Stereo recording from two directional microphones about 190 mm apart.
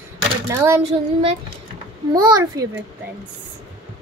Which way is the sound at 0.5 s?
15° right (ahead or behind).